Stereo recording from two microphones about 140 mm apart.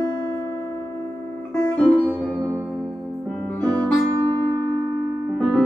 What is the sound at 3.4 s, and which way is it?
Music, 10° left (ahead or behind).